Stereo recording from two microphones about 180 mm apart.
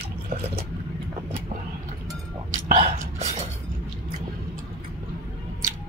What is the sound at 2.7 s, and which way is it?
Whispering, 40° right (ahead or behind).